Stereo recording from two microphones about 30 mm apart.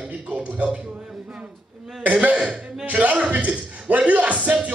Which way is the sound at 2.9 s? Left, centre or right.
Right.